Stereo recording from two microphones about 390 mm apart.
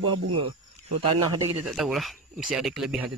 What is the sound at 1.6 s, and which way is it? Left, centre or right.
Speech, centre.